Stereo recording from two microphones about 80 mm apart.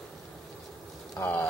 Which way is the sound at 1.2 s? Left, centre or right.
Left.